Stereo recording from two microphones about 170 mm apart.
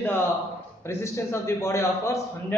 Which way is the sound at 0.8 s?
15° left (ahead or behind).